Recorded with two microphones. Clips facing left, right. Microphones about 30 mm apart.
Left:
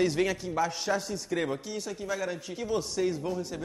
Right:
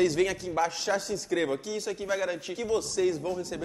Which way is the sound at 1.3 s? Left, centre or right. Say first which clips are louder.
Right 2 dB; centre.